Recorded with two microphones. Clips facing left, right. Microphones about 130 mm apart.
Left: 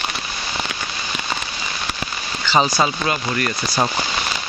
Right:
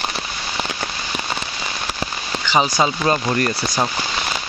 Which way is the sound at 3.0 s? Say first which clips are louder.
Right 3 dB; 35° right (ahead or behind).